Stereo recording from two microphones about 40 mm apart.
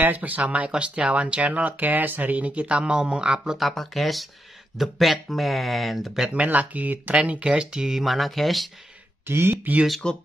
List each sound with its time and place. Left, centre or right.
0.0 s speech: right
1.7 s speech: right
3.7 s speech: centre
6.3 s speech: right
7.2 s speech: right
7.7 s speech: centre
8.0 s speech: centre
9.3 s speech: right
9.7 s speech: right
10.0 s speech: left